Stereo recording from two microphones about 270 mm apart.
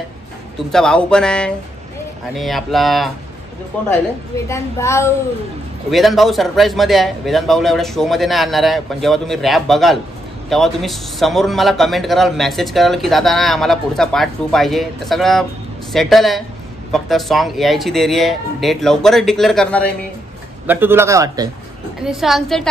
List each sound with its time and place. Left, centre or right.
0.6 s a man's voice: centre
20.6 s a man's voice: centre
22.0 s a man's voice: centre